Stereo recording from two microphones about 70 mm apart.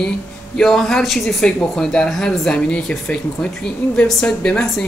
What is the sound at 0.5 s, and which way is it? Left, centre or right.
Speech, centre.